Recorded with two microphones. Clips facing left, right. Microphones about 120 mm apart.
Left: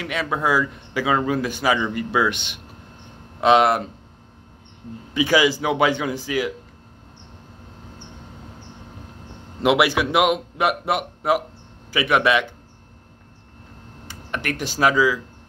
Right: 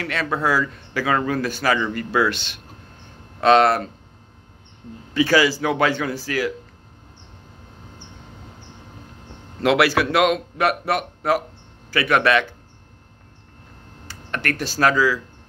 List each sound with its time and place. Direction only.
0.0 s speech: 15° left (ahead or behind)
5.1 s speech: 15° left (ahead or behind)
9.6 s speech: 20° left (ahead or behind)
14.0 s speech: 15° left (ahead or behind)